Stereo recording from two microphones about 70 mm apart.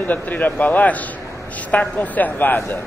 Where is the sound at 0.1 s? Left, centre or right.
Left.